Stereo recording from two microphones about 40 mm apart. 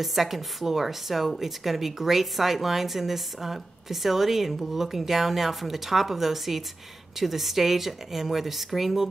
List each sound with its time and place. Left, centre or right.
0.0 s a woman's voice: centre